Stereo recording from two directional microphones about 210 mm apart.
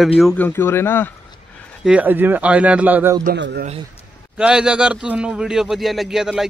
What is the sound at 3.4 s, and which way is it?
Speech, 55° right (ahead or behind).